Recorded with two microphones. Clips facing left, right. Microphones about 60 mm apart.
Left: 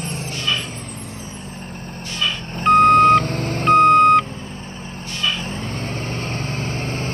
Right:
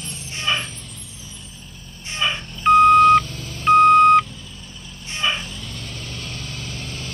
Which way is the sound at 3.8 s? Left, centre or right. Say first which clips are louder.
Even; centre.